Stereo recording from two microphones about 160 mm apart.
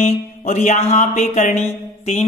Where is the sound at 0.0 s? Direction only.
50° left (ahead or behind).